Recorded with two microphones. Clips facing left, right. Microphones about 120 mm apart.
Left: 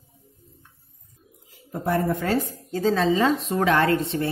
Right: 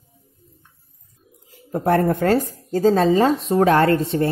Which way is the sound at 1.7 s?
65° right (ahead or behind).